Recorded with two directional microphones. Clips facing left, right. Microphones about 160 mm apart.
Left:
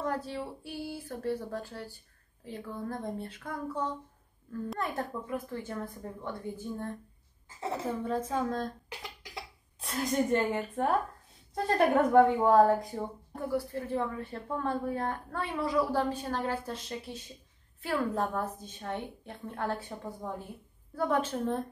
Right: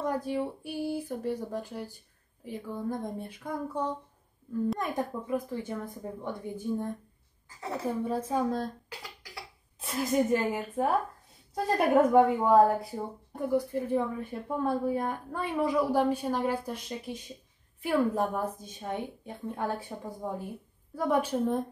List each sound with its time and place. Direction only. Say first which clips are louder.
0.0 s a woman's voice: right 4 dB; 15° right (ahead or behind)
7.4 s speech: left 1 dB; 25° left (ahead or behind)
8.0 s a woman's voice: right 3 dB; 10° right (ahead or behind)
8.8 s cough: left 1 dB; 20° left (ahead or behind)
9.8 s a woman's voice: right 3 dB; centre (ahead or behind)
13.5 s a woman's voice: right 5 dB; 20° right (ahead or behind)